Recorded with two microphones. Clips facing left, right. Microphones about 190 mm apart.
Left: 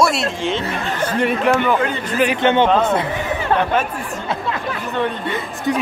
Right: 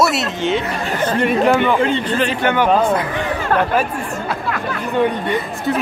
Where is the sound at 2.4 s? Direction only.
25° left (ahead or behind).